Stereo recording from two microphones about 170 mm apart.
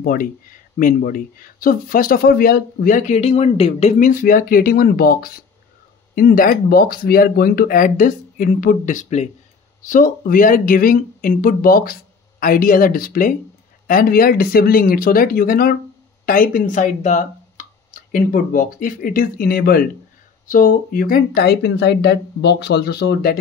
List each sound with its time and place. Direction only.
0.0 s speech: 60° left (ahead or behind); by 4.1 s 35° left (ahead or behind)
4.1 s speech: 55° left (ahead or behind)
20.4 s speech: 50° left (ahead or behind); by 23.4 s 70° left (ahead or behind)